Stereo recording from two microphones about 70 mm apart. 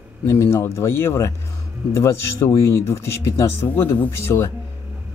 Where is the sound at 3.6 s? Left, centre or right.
Left.